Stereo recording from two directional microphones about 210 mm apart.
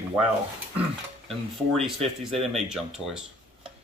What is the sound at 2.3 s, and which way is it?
Speech, centre (ahead or behind).